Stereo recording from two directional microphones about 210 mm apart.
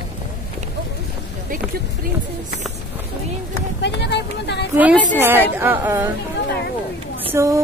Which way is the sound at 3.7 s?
55° left (ahead or behind).